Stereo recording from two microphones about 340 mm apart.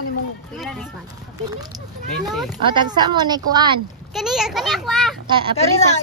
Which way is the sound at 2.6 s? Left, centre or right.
Centre.